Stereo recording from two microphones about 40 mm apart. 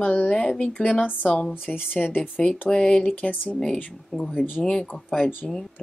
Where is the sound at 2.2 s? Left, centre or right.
Left.